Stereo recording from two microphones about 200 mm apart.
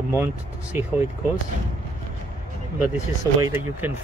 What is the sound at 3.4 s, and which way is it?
Speech, 10° right (ahead or behind).